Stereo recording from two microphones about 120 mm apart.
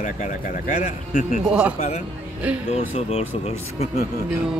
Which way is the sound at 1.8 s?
75° left (ahead or behind).